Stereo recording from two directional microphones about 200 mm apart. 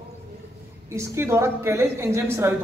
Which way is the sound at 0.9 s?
15° right (ahead or behind).